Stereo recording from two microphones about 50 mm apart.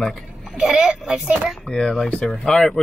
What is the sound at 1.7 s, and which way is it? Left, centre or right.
Speech, centre.